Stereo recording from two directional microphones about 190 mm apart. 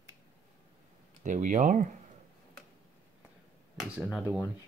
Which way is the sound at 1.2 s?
40° right (ahead or behind).